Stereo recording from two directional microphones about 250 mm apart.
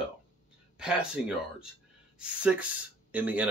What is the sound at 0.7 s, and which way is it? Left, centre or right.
Speech, centre.